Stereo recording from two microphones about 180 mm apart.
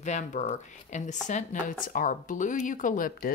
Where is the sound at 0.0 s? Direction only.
40° left (ahead or behind).